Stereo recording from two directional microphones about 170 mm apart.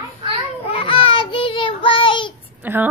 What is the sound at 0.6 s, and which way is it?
Child singing, 35° left (ahead or behind).